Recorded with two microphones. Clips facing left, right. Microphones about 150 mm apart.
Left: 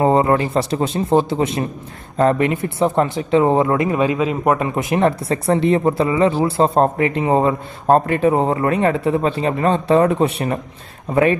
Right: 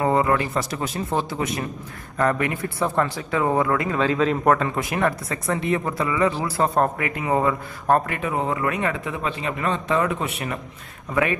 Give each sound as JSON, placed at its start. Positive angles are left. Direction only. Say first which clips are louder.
{"t": 0.0, "sound": "speech", "louder": "left 5 dB", "side_deg": 30}